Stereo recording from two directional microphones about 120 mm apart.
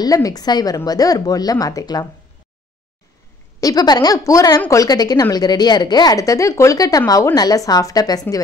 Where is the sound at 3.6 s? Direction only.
35° left (ahead or behind).